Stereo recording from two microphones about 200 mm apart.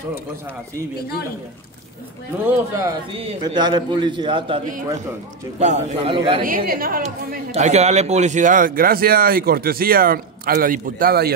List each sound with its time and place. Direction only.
2.4 s speech: 10° right (ahead or behind)
3.2 s a man's voice: 25° right (ahead or behind)
5.6 s a man's voice: 35° right (ahead or behind)
6.4 s a man's voice: 45° right (ahead or behind)
7.5 s a man's voice: 35° right (ahead or behind); by 11.3 s 50° right (ahead or behind)